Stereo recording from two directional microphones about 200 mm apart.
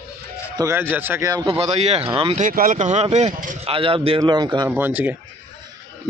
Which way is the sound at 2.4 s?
40° right (ahead or behind).